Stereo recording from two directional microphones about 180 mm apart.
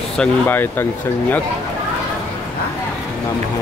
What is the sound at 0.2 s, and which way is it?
Speech, 10° left (ahead or behind).